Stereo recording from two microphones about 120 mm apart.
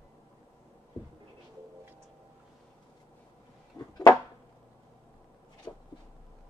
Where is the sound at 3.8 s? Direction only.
30° left (ahead or behind).